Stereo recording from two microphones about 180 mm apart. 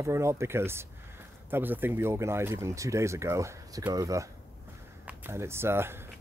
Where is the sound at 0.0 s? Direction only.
15° right (ahead or behind).